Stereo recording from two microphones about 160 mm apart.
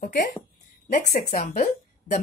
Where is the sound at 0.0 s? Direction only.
65° left (ahead or behind).